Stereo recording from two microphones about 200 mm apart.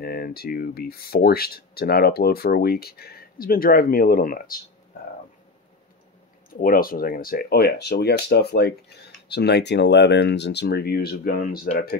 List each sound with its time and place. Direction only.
0.0 s speech: 50° left (ahead or behind)
6.5 s speech: 45° left (ahead or behind)